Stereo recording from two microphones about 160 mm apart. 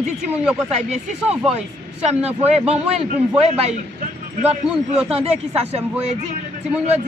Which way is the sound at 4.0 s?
40° right (ahead or behind).